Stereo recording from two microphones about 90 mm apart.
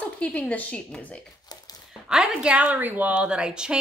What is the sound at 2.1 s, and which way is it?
A woman's voice, 10° right (ahead or behind).